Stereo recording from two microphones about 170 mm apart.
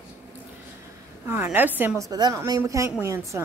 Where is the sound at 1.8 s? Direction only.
10° right (ahead or behind).